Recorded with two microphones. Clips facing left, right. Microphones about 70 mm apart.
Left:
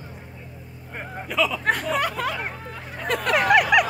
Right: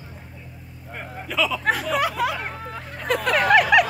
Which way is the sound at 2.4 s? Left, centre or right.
Centre.